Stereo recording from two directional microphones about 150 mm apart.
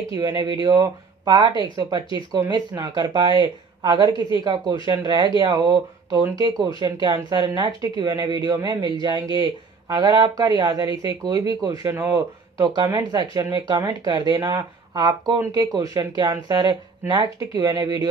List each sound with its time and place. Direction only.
0.1 s speech: 25° right (ahead or behind)